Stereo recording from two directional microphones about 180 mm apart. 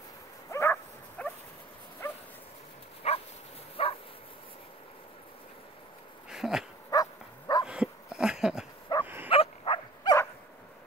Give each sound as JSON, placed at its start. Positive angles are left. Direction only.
{"t": 0.5, "sound": "dog", "side_deg": 15}
{"t": 3.0, "sound": "dog", "side_deg": 35}
{"t": 3.8, "sound": "bow-wow", "side_deg": 35}
{"t": 6.3, "sound": "dog", "side_deg": 0}
{"t": 6.9, "sound": "livestock", "side_deg": 20}
{"t": 7.6, "sound": "dog", "side_deg": -5}
{"t": 9.0, "sound": "bow-wow", "side_deg": -10}
{"t": 9.3, "sound": "dog", "side_deg": 30}